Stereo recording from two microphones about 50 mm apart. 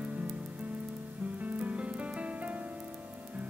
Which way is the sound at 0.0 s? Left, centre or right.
Right.